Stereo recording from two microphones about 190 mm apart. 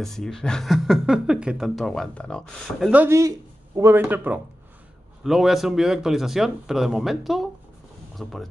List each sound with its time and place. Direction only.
0.0 s speech: 5° left (ahead or behind)
2.9 s speech: 10° right (ahead or behind)